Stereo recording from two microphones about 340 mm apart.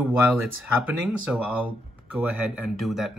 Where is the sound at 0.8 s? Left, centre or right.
Centre.